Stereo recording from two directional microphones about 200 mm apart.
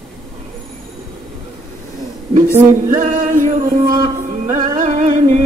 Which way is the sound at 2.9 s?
40° right (ahead or behind).